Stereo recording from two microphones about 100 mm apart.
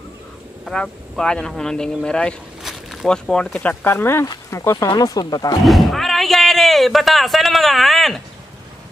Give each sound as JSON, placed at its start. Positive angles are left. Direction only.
{"t": 0.7, "sound": "speech", "side_deg": 5}
{"t": 2.6, "sound": "speech", "side_deg": 0}
{"t": 3.8, "sound": "speech", "side_deg": 25}
{"t": 4.8, "sound": "speech", "side_deg": 45}
{"t": 5.7, "sound": "speech", "side_deg": 0}